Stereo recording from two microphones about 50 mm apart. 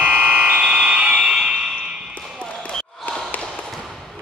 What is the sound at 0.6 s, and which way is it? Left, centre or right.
Fire alarm, centre.